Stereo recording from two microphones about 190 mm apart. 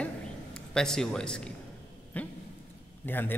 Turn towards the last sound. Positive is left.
turn(degrees=10)  # may be behind; listen again after turning